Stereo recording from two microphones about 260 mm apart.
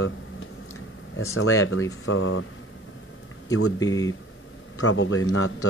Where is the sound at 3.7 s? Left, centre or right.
Centre.